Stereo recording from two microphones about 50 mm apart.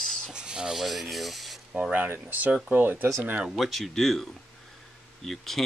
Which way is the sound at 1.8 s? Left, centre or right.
Right.